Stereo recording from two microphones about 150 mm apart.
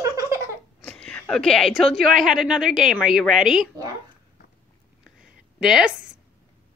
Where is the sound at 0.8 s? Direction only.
5° left (ahead or behind).